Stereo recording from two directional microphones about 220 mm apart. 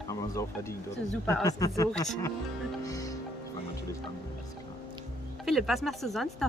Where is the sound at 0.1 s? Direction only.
15° left (ahead or behind).